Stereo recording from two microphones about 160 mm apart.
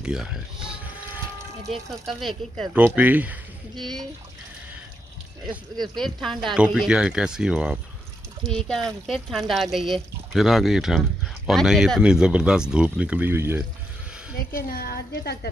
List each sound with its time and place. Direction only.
0.0 s speech: 5° right (ahead or behind)
2.7 s speech: 10° right (ahead or behind)
5.8 s speech: centre (ahead or behind); by 13.7 s 15° right (ahead or behind)
14.5 s a woman's voice: 70° left (ahead or behind)